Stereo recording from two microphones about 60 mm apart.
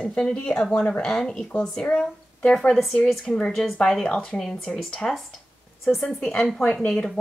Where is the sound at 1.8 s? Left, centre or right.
Left; by 6.1 s centre.